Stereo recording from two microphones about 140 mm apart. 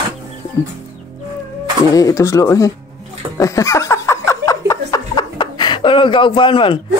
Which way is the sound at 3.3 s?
20° left (ahead or behind).